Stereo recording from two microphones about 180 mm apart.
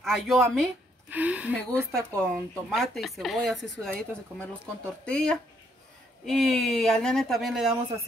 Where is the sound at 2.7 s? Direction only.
Centre (ahead or behind).